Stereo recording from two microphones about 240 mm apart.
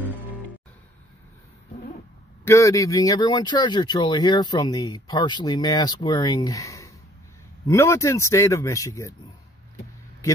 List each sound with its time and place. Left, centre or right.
2.4 s speech: centre